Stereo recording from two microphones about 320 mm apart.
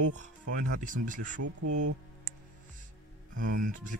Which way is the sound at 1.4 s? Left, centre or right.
Right.